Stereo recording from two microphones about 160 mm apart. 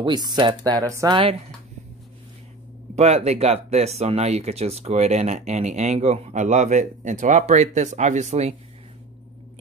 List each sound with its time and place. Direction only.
0.3 s speech: 30° right (ahead or behind)
3.0 s speech: 45° right (ahead or behind)